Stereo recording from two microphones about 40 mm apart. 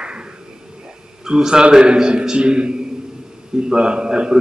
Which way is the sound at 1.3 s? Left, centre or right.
Centre.